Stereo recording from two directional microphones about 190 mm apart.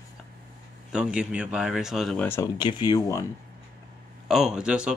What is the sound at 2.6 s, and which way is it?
Speech, 25° left (ahead or behind).